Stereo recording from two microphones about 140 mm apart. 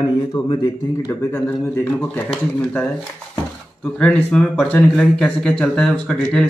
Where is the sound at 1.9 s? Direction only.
5° left (ahead or behind).